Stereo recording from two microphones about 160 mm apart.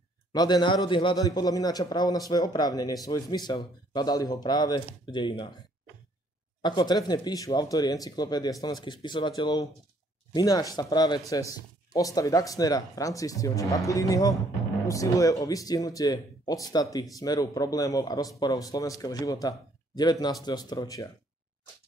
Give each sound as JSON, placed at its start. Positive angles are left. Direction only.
{"t": 0.3, "sound": "a man's voice", "side_deg": 25}
{"t": 6.6, "sound": "a man's voice", "side_deg": 25}